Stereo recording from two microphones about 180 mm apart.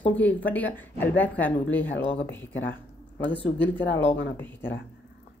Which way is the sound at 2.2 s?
90° left.